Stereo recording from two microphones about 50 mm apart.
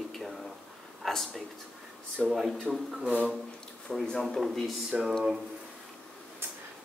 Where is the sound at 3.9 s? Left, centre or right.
Centre.